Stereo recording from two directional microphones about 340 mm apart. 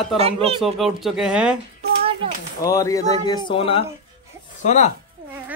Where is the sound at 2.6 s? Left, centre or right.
Centre.